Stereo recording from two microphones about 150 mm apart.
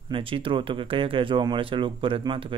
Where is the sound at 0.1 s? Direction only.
35° right (ahead or behind).